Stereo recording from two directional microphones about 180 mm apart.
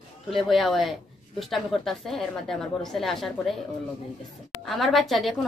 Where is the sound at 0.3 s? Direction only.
Centre (ahead or behind).